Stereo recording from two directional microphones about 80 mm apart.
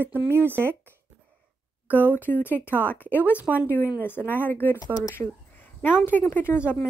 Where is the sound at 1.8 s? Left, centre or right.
Left.